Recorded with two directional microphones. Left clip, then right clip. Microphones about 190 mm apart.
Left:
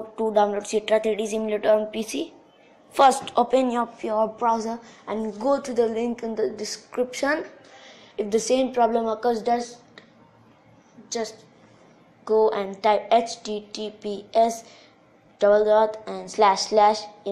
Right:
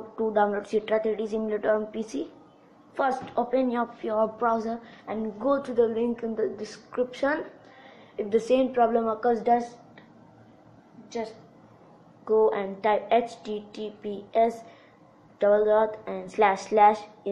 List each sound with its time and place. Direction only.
0.1 s a woman's voice: 5° left (ahead or behind)
3.3 s a woman's voice: 25° left (ahead or behind)
3.7 s a woman's voice: 10° left (ahead or behind)
4.6 s a woman's voice: 25° left (ahead or behind)
5.4 s a woman's voice: 10° left (ahead or behind)
12.3 s a woman's voice: 10° left (ahead or behind)